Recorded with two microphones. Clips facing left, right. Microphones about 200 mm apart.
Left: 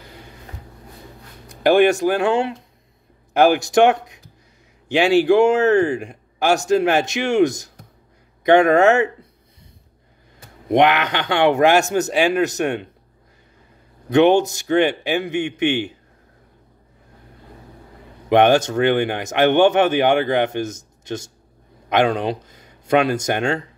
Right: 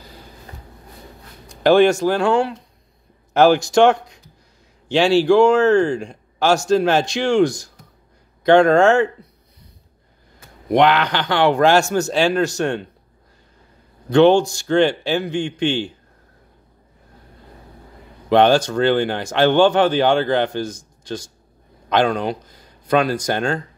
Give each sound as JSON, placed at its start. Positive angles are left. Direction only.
{"t": 1.6, "sound": "speech", "side_deg": 15}
{"t": 10.7, "sound": "speech", "side_deg": 20}
{"t": 14.0, "sound": "speech", "side_deg": 20}
{"t": 18.3, "sound": "speech", "side_deg": 20}